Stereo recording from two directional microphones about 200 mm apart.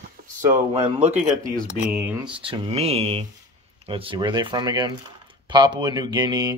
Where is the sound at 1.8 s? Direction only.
35° left (ahead or behind).